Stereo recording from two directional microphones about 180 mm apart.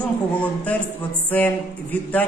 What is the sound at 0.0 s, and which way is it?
Speech, 10° left (ahead or behind).